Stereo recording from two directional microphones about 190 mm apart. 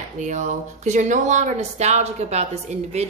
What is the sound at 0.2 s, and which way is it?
Speech, 40° right (ahead or behind).